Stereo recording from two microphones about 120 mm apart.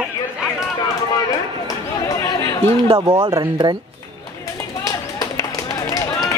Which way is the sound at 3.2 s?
35° right (ahead or behind).